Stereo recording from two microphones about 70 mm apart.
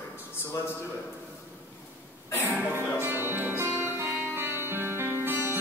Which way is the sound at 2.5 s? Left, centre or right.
Right.